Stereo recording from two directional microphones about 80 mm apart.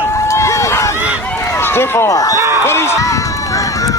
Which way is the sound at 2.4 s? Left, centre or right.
Right.